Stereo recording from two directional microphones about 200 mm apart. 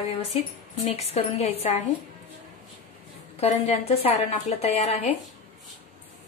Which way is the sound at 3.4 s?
30° left (ahead or behind).